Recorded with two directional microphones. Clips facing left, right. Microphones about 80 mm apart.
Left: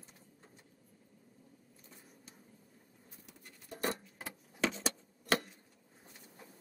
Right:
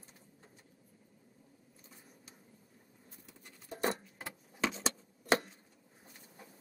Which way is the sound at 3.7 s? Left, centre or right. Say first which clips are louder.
Right 2 dB; right.